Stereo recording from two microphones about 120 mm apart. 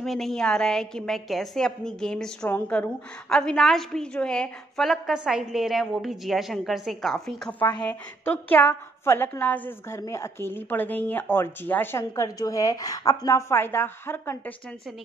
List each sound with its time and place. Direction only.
0.0 s a woman's voice: 5° left (ahead or behind)
3.3 s a woman's voice: 5° left (ahead or behind)